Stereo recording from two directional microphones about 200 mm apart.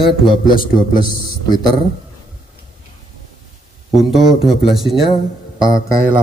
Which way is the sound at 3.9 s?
Centre (ahead or behind).